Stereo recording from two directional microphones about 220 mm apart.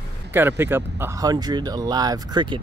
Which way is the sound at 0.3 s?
10° right (ahead or behind).